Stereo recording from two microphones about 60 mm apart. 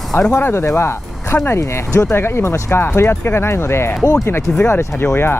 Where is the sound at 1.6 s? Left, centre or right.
Left.